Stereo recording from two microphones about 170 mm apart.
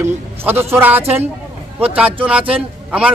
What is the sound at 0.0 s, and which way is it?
A man's voice, 15° right (ahead or behind).